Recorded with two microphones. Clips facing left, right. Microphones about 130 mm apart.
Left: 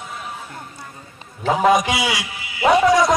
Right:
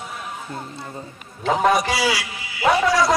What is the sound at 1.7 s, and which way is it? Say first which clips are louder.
A man's voice: left 1 dB; 20° left (ahead or behind).